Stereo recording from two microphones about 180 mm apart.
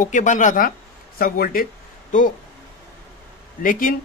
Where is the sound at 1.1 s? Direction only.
55° left (ahead or behind).